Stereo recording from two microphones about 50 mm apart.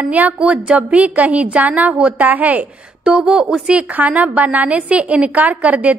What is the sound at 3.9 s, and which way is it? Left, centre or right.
A woman's voice, right.